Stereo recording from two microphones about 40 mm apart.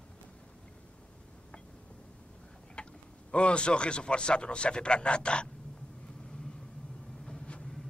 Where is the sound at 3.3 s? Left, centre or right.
Left.